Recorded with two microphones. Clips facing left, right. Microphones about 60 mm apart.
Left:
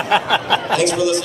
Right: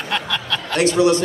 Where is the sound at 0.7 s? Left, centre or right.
Right.